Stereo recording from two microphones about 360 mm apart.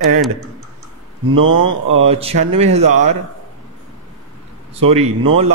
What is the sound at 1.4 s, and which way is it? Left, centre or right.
Mantra, right.